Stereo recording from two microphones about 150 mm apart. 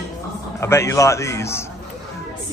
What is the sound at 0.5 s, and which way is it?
Speech, 20° left (ahead or behind).